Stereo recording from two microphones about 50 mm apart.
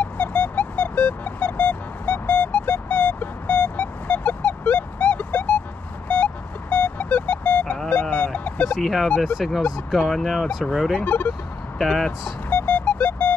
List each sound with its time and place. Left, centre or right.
0.0 s music: left
6.0 s a sound: left
8.8 s speech: centre
9.2 s speech: centre
12.4 s music: left